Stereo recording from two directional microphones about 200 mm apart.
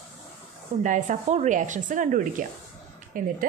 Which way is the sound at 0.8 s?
40° right (ahead or behind).